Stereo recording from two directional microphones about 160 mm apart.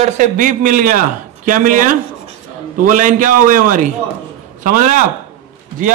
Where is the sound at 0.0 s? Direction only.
50° right (ahead or behind).